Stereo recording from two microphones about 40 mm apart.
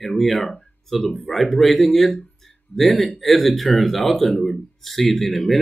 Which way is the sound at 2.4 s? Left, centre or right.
Centre.